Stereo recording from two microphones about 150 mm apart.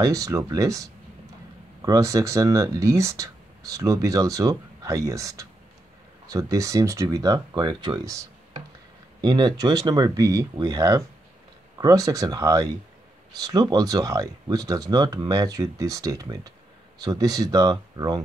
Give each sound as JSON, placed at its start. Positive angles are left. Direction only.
{"t": 0.0, "sound": "speech", "side_deg": -20}